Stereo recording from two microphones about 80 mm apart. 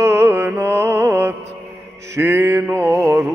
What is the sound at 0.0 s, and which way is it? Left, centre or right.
Mantra, right.